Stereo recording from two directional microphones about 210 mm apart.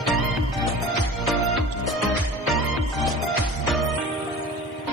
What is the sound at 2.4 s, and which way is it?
Music, centre (ahead or behind).